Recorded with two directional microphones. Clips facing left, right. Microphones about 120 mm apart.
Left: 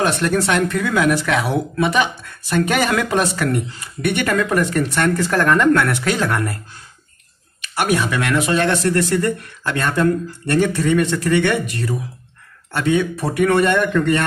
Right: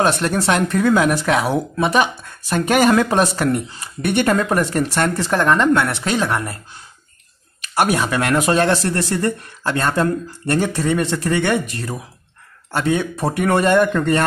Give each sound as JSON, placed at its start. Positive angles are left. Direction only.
{"t": 0.0, "sound": "speech", "side_deg": -30}
{"t": 7.6, "sound": "speech", "side_deg": -35}